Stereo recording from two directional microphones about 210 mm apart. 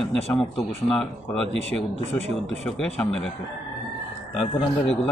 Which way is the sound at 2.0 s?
30° right (ahead or behind).